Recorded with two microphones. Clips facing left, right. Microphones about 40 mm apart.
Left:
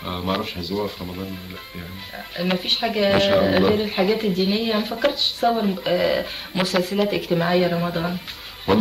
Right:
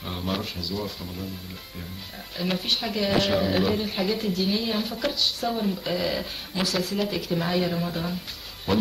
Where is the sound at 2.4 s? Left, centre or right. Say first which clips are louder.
Left 5 dB; left.